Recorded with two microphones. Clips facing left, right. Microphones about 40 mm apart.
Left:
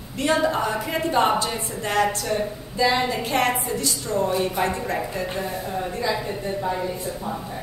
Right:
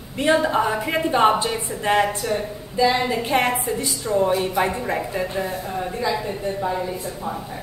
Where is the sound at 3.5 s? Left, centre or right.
Centre.